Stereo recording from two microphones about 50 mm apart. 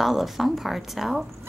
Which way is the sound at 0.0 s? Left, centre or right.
Centre.